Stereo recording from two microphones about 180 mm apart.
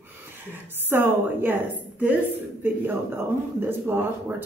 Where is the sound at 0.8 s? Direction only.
10° right (ahead or behind).